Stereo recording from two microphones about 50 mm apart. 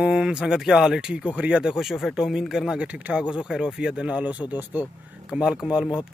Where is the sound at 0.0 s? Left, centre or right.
Centre.